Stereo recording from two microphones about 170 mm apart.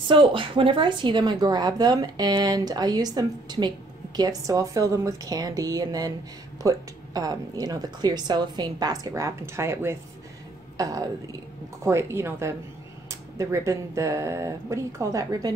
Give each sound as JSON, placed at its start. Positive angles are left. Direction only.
{"t": 0.1, "sound": "a woman's voice", "side_deg": -30}